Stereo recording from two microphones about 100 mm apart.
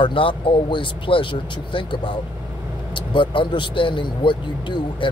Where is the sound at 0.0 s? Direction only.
60° left (ahead or behind).